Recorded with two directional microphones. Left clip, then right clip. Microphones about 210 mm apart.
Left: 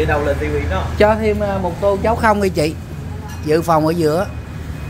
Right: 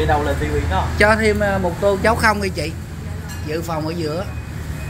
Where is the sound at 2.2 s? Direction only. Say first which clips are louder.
Left 3 dB; 20° left (ahead or behind).